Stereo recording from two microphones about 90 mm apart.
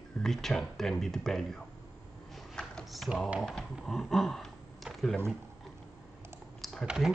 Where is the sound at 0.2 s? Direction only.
5° left (ahead or behind).